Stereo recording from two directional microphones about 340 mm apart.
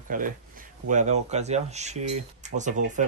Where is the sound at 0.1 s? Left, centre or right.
Right.